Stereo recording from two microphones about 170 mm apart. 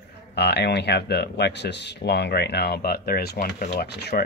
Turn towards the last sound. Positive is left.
turn(degrees=70)  # may be behind; listen again after turning